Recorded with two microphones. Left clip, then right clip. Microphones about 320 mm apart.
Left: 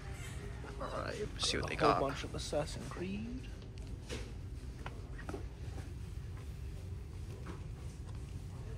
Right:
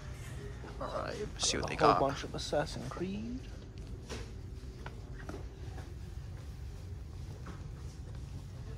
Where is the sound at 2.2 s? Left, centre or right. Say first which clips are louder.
Right 4 dB; right.